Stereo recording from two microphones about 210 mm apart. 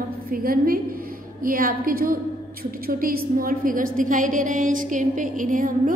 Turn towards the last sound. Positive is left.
turn(degrees=-40)  # may be behind; listen again after turning